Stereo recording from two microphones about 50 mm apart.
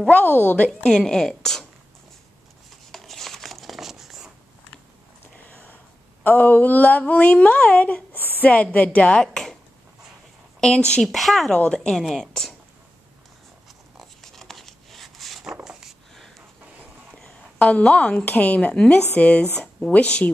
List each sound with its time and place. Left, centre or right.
0.1 s speech: left
1.0 s a woman's voice: centre
2.9 s a sound: centre
5.5 s a sound: left
6.2 s a woman's voice: left
9.2 s a sound: centre
10.6 s speech: centre
11.0 s speech: centre
11.5 s speech: centre
12.2 s speech: centre
14.2 s a sound: centre
17.1 s a woman's voice: left